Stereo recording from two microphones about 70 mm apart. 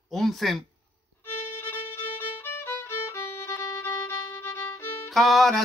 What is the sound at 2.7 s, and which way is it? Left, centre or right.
Violin, left.